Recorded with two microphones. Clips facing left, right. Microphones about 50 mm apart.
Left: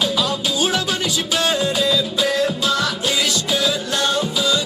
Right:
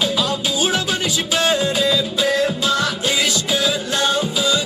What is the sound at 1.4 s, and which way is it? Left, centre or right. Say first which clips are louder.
Music: right 1 dB; centre.